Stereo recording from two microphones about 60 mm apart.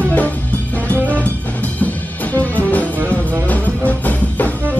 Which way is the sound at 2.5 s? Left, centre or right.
Left.